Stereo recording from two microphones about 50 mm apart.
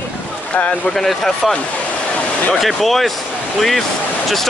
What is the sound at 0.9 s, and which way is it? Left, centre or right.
Speech, centre.